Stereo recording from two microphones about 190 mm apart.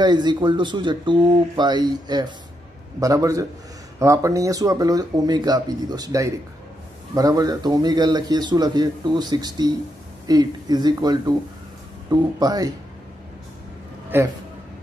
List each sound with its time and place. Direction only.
0.0 s a man's voice: 25° right (ahead or behind)
14.1 s a man's voice: 10° right (ahead or behind)